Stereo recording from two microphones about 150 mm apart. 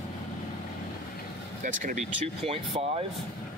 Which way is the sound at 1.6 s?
60° right (ahead or behind).